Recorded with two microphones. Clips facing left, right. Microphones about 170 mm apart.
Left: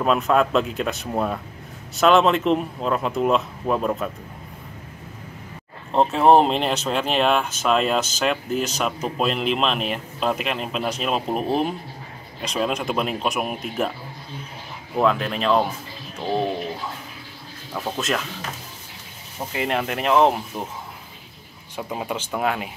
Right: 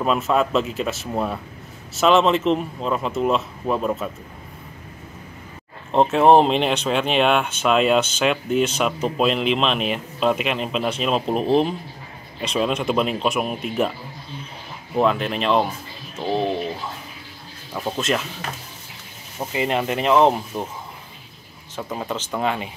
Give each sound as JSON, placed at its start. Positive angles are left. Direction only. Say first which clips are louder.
{"t": 0.0, "sound": "speech", "louder": "left 1 dB", "side_deg": 0}
{"t": 5.9, "sound": "speech", "louder": "right 2 dB", "side_deg": 0}
{"t": 15.0, "sound": "speech", "louder": "right 1 dB", "side_deg": 0}
{"t": 17.7, "sound": "speech", "louder": "right 2 dB", "side_deg": -5}
{"t": 19.5, "sound": "speech", "louder": "right 2 dB", "side_deg": 0}
{"t": 21.7, "sound": "speech", "louder": "even", "side_deg": 10}